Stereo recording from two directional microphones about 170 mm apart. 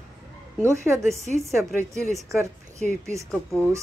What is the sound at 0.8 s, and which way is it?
Speech, 15° right (ahead or behind).